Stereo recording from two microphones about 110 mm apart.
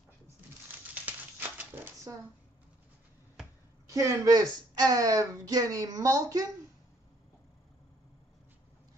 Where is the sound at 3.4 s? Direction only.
5° right (ahead or behind).